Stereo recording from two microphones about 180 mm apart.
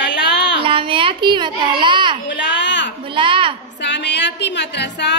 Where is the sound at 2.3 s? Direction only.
85° left.